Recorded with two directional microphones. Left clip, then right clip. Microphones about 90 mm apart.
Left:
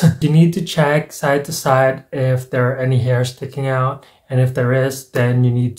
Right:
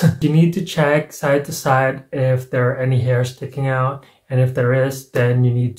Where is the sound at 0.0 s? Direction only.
15° left (ahead or behind).